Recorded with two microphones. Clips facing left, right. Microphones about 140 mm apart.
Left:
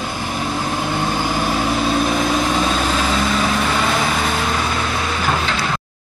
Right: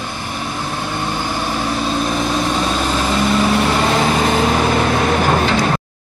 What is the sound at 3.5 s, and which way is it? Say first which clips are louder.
Vehicle: right 3 dB; 25° right (ahead or behind).